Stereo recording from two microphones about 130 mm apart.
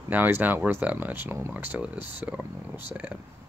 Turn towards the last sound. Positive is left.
turn(degrees=-10)  # may be behind; listen again after turning